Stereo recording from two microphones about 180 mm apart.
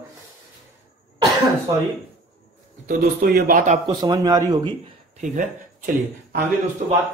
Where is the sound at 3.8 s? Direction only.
25° right (ahead or behind).